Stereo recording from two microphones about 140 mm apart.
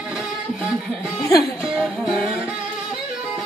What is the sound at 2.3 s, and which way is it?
Music, centre (ahead or behind).